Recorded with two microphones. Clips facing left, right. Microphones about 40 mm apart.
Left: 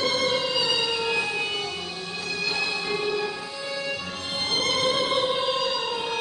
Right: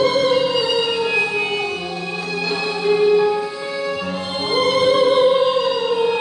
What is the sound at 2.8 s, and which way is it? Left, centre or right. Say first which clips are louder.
Music: right 12 dB; centre.